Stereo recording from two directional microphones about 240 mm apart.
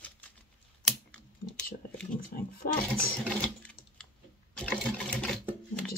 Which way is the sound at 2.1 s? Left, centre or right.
Left.